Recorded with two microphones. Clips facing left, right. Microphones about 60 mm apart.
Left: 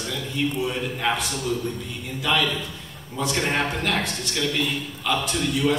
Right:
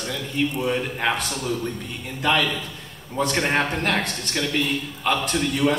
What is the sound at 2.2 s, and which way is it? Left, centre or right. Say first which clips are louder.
A man's voice: right 2 dB; right.